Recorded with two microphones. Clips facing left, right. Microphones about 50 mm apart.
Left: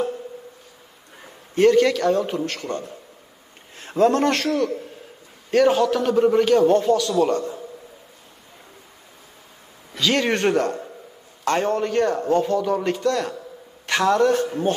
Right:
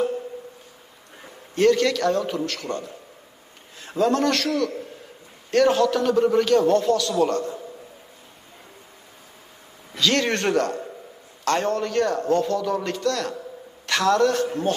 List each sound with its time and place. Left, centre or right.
1.2 s a man's voice: centre
2.2 s a man's voice: left
5.5 s a man's voice: centre
9.9 s a man's voice: centre